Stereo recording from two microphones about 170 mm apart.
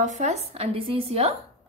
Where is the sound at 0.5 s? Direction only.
35° right (ahead or behind).